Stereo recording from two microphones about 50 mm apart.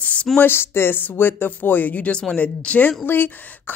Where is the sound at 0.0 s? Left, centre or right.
Left.